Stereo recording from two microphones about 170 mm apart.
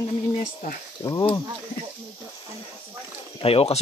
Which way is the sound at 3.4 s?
35° left (ahead or behind).